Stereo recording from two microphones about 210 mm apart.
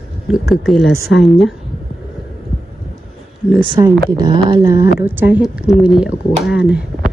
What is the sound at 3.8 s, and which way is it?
Speech, 20° right (ahead or behind).